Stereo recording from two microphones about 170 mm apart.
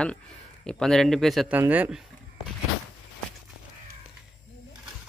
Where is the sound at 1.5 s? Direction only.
10° right (ahead or behind).